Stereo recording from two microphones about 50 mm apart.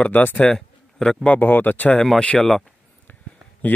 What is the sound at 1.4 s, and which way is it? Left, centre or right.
Speech, left.